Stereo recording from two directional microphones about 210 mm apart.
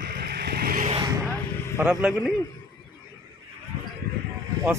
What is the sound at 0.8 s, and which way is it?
Vehicle, 25° right (ahead or behind).